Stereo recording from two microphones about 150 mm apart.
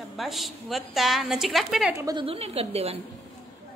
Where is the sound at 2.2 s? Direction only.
40° right (ahead or behind).